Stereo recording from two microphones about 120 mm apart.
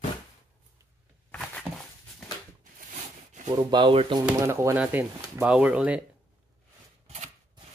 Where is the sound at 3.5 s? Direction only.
35° right (ahead or behind).